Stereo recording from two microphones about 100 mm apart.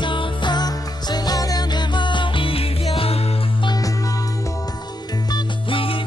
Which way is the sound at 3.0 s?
85° left.